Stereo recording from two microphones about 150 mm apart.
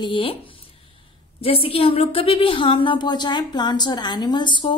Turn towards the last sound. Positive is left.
turn(degrees=35)  # may be behind; listen again after turning